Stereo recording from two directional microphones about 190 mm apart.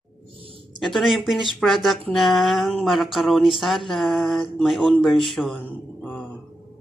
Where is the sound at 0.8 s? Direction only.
Centre (ahead or behind).